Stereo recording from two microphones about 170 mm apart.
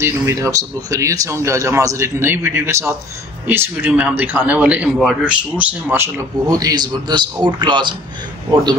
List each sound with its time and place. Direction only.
0.0 s speech: 15° right (ahead or behind)